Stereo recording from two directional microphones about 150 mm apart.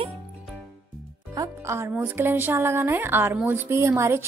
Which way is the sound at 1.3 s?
20° right (ahead or behind).